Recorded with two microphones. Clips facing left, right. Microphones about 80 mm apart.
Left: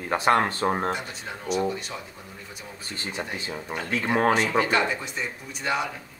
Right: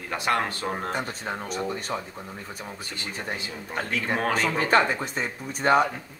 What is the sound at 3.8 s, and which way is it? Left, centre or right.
Speech, left.